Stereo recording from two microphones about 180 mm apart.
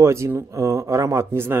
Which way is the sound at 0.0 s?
15° right (ahead or behind).